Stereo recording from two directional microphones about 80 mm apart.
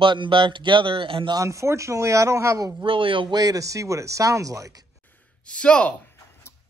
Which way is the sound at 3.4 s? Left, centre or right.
Right.